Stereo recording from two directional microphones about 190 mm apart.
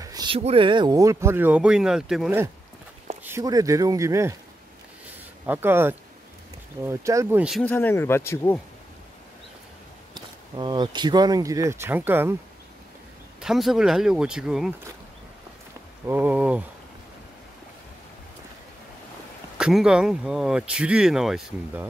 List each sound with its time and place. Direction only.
0.0 s a sound: 20° right (ahead or behind)
0.4 s speech: 30° right (ahead or behind); by 2.3 s 5° right (ahead or behind)
3.3 s speech: 15° right (ahead or behind)
5.5 s speech: 10° right (ahead or behind)
7.6 s speech: 10° left (ahead or behind)
10.1 s speech: 20° right (ahead or behind)
13.4 s speech: centre (ahead or behind)
16.1 s speech: 10° right (ahead or behind)
19.6 s speech: 5° right (ahead or behind)